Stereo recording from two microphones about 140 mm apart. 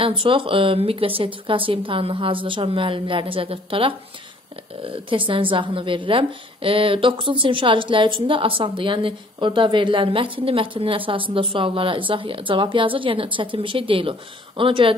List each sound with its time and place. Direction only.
0.0 s a woman's voice: 40° right (ahead or behind)